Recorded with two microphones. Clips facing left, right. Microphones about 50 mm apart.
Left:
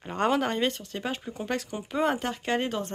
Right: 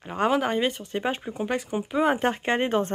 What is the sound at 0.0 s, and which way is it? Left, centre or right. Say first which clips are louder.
Speech: right 2 dB; centre.